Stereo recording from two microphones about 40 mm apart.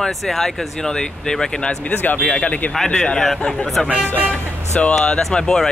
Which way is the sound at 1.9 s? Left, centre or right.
Left.